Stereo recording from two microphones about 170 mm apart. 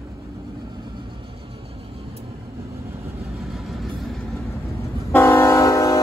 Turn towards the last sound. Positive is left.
turn(degrees=20)  # may be behind; listen again after turning